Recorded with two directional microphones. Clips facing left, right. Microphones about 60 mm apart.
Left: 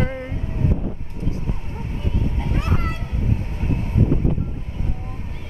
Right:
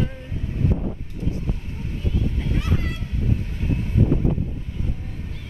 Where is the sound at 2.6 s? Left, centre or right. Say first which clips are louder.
Left 3 dB; left.